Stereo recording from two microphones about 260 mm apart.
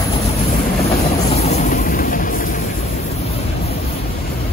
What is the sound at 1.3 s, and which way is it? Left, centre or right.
Vehicle, left.